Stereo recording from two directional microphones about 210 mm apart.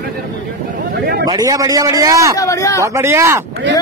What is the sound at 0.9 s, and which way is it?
Speech, 45° right (ahead or behind).